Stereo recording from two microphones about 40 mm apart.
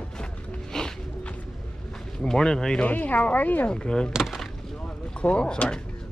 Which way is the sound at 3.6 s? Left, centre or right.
Left.